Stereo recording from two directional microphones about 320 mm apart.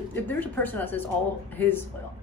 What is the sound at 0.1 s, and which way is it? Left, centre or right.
A woman's voice, centre.